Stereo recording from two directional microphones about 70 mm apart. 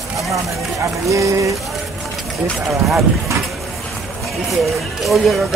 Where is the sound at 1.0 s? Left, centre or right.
Right.